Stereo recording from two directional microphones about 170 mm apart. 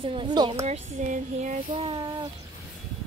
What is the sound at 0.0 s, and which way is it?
Speech, 30° right (ahead or behind).